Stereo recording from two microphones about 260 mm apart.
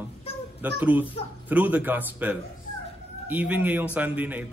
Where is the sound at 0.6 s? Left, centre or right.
Centre.